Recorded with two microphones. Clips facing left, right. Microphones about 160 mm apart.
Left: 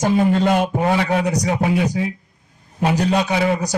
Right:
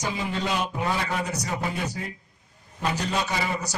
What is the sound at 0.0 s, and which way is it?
A man's voice, 55° left (ahead or behind).